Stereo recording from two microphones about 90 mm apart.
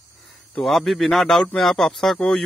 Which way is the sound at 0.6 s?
5° left (ahead or behind).